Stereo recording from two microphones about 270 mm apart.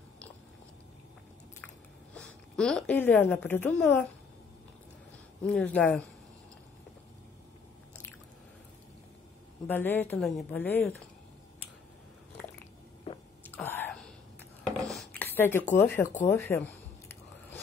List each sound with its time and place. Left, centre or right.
2.1 s a woman's voice: centre
5.4 s speech: centre
9.7 s a woman's voice: centre
13.1 s whispering: left
13.5 s whispering: centre
14.9 s a sound: centre